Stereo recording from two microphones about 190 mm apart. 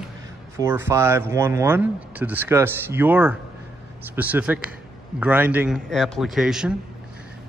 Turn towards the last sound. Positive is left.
turn(degrees=-5)  # may be behind; listen again after turning